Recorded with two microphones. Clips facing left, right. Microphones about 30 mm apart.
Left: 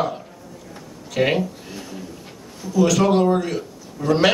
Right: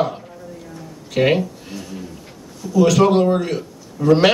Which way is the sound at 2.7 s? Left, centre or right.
Centre.